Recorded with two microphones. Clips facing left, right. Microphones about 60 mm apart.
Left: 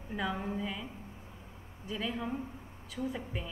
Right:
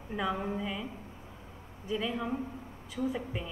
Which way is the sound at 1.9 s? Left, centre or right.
Centre.